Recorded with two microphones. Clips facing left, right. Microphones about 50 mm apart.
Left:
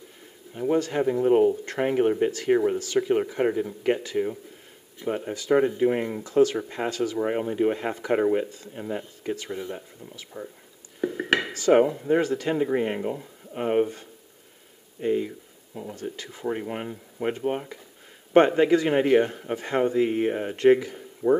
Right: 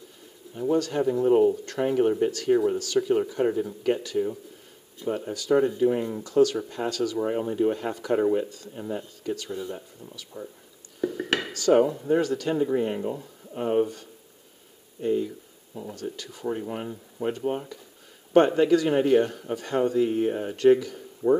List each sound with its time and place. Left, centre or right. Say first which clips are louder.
0.6 s a man's voice: left 1 dB; left
11.0 s a sound: left 2 dB; left
12.1 s a man's voice: left 1 dB; left